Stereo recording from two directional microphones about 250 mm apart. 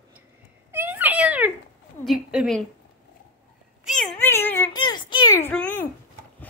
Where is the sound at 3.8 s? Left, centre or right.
Centre.